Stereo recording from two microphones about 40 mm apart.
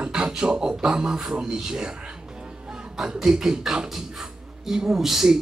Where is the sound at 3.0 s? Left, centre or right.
Centre.